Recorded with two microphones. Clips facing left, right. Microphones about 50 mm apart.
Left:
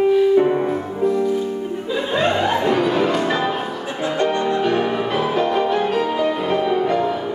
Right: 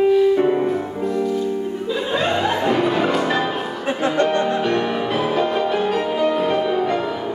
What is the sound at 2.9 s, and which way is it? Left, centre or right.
Music, centre.